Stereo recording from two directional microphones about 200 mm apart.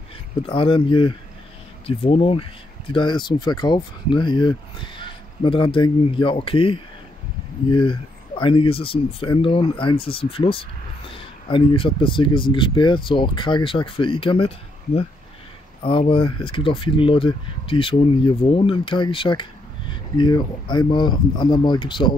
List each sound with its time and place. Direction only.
0.4 s speech: 25° left (ahead or behind)
15.8 s speech: 25° left (ahead or behind)